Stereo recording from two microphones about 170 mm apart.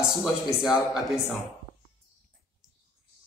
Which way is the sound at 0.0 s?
5° right (ahead or behind).